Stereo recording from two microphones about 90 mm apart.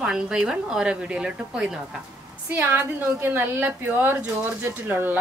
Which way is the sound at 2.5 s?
25° right (ahead or behind).